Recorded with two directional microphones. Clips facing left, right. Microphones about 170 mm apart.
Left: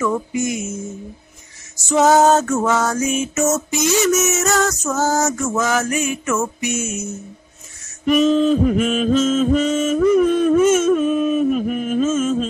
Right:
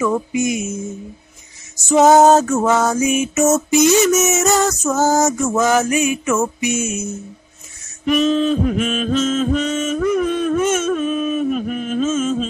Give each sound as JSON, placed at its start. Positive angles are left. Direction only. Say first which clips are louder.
{"t": 0.0, "sound": "music", "louder": "right 2 dB", "side_deg": -15}
{"t": 1.9, "sound": "music", "louder": "right 3 dB", "side_deg": -15}
{"t": 8.0, "sound": "mantra", "louder": "left 1 dB", "side_deg": 5}